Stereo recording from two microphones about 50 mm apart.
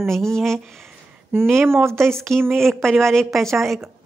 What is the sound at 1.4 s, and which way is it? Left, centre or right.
Speech, right.